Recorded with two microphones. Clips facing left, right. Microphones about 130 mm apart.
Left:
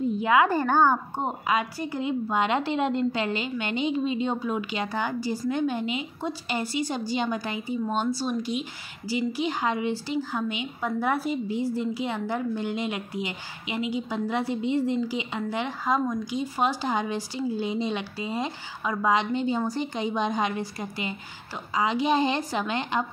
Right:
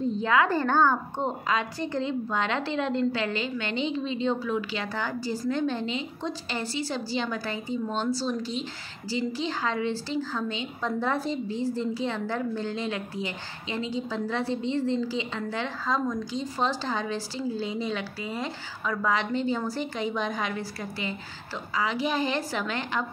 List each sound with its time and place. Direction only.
0.2 s a woman's voice: 15° left (ahead or behind)